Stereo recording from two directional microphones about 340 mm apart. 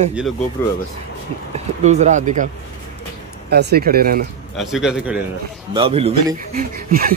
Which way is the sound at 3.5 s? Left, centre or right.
Right.